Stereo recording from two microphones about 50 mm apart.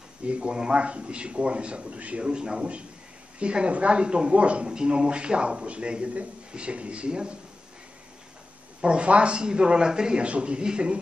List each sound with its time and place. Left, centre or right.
0.3 s a man's voice: centre
8.8 s a man's voice: right